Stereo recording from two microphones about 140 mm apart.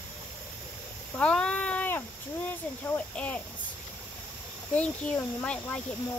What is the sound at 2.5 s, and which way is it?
Speech, 15° left (ahead or behind).